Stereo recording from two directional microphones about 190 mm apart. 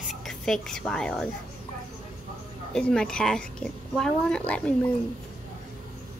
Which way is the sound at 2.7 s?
5° left (ahead or behind).